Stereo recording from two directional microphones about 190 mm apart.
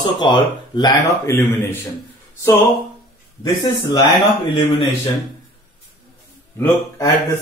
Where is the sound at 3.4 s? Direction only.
20° left (ahead or behind).